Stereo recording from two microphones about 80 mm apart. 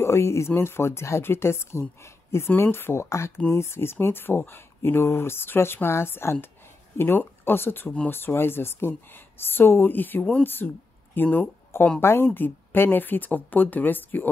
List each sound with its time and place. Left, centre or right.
0.0 s speech: left